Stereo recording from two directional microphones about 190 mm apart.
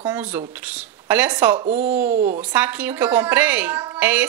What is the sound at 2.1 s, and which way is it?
Speech, 40° right (ahead or behind).